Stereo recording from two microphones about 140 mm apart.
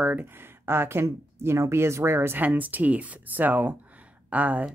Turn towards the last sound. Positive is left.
turn(degrees=-10)  # may be behind; listen again after turning